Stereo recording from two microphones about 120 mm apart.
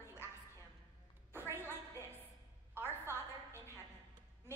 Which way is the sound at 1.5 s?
20° right (ahead or behind).